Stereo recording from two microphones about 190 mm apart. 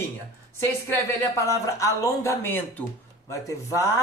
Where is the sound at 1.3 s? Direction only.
15° left (ahead or behind).